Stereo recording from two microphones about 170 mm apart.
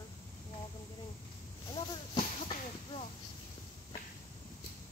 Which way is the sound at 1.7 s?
25° left (ahead or behind).